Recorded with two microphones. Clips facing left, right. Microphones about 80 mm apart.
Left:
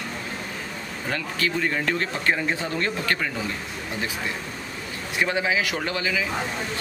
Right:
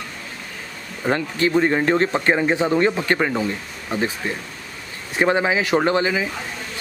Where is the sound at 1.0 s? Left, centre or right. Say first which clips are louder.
Right 7 dB; right.